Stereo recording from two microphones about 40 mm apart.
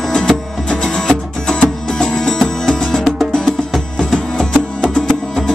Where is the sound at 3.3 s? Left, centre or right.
Centre.